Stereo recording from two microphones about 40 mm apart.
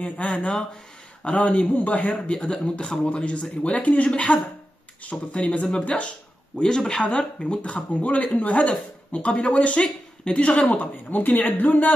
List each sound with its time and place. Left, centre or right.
0.0 s speech: left
7.6 s speech: left